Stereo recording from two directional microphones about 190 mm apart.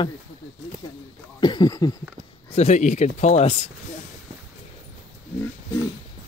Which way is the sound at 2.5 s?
35° left (ahead or behind).